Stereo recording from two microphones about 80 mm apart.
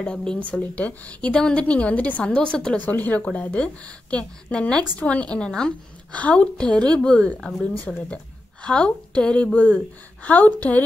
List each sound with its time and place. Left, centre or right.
0.0 s a woman's voice: centre
7.3 s a woman's voice: centre